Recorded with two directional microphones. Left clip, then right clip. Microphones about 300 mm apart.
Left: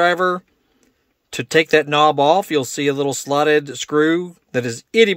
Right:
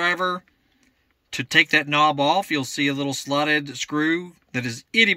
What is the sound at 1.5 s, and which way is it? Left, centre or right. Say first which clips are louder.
Speech: left 3 dB; centre.